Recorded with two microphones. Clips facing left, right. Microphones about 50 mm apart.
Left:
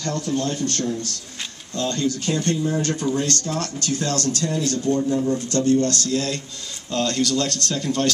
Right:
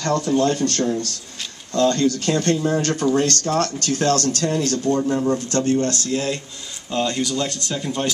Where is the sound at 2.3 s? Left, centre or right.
Right.